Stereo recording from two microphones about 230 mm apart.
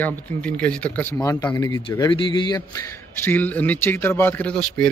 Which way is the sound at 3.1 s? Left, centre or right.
Centre.